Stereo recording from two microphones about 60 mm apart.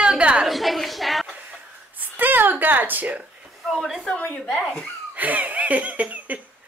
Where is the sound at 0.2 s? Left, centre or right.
Centre.